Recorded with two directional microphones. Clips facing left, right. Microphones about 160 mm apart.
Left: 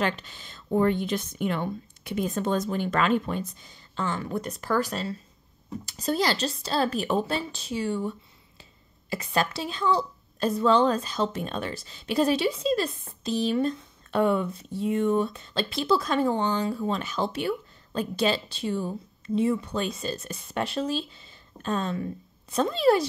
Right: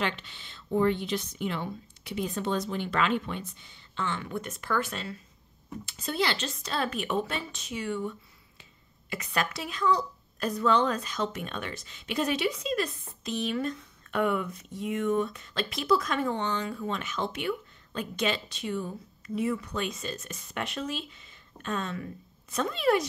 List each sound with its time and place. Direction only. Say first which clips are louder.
0.0 s a woman's voice: left 4 dB; 45° left (ahead or behind)